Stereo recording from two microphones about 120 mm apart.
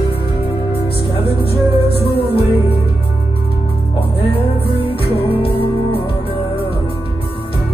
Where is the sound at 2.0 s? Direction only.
50° left (ahead or behind).